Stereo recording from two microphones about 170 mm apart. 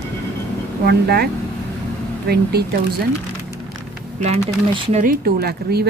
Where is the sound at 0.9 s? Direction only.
65° right (ahead or behind).